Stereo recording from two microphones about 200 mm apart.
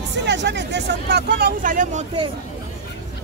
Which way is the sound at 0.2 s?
60° right (ahead or behind).